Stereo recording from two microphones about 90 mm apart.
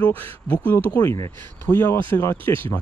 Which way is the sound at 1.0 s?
30° left (ahead or behind).